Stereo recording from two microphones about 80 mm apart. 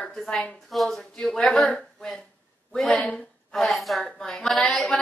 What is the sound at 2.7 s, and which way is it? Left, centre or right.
Speech, centre.